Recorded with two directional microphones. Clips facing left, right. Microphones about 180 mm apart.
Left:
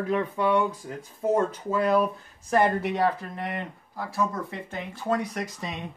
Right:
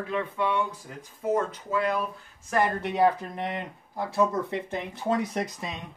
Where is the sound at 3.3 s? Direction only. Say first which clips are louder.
Even; 20° right (ahead or behind).